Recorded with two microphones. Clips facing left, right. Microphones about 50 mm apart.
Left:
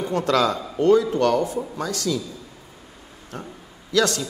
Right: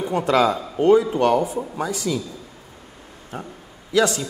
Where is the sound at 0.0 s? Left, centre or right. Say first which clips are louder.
Right 2 dB; centre.